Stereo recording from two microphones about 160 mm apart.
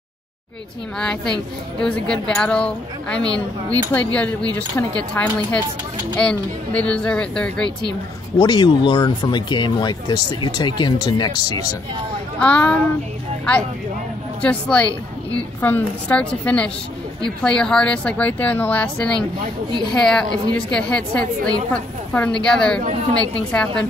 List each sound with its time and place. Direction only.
0.9 s a woman's voice: 5° left (ahead or behind)
8.4 s speech: 25° left (ahead or behind)
12.4 s a woman's voice: 10° left (ahead or behind)
14.4 s a woman's voice: 10° left (ahead or behind)